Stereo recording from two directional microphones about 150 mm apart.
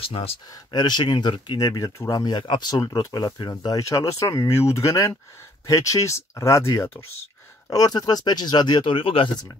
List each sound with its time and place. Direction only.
0.0 s speech: 40° left (ahead or behind)